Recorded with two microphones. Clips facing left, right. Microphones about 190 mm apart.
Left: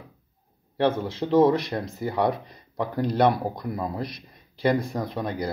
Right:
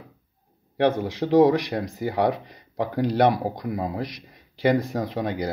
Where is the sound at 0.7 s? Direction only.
15° right (ahead or behind).